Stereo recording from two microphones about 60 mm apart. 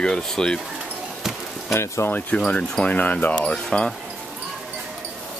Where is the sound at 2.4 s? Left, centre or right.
Left.